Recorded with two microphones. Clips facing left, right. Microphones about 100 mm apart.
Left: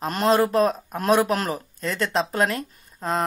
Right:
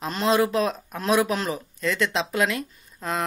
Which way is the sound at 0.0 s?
45° left (ahead or behind).